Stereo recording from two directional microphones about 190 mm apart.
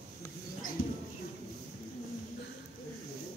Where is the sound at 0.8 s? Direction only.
50° left (ahead or behind).